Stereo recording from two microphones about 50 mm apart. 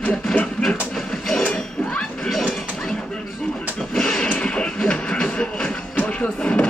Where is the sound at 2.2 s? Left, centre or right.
Centre.